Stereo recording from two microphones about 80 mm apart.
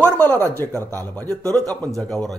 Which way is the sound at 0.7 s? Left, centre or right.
Right.